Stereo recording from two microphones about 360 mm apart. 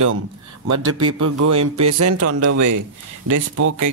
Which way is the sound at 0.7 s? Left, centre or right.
Right.